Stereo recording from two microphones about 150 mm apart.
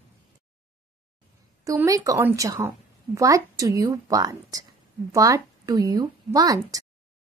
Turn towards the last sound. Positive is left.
turn(degrees=-25)  # may be behind; listen again after turning